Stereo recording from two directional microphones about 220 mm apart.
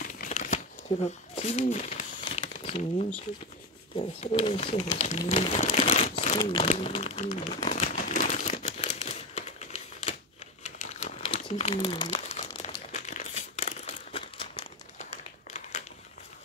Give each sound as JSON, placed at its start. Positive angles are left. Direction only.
{"t": 0.0, "sound": "crumpling", "side_deg": 35}
{"t": 3.9, "sound": "speech", "side_deg": 25}
{"t": 5.3, "sound": "crumpling", "side_deg": 25}
{"t": 6.4, "sound": "speech", "side_deg": 20}
{"t": 6.7, "sound": "crumpling", "side_deg": 30}